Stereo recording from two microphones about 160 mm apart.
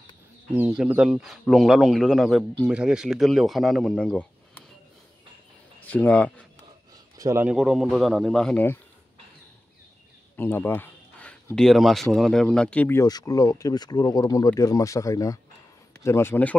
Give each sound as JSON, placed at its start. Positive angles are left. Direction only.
{"t": 0.6, "sound": "speech", "side_deg": -10}
{"t": 5.9, "sound": "a man's voice", "side_deg": 10}
{"t": 7.2, "sound": "a man's voice", "side_deg": -20}
{"t": 7.4, "sound": "speech", "side_deg": 0}
{"t": 10.3, "sound": "a sound", "side_deg": 15}
{"t": 11.5, "sound": "a man's voice", "side_deg": 0}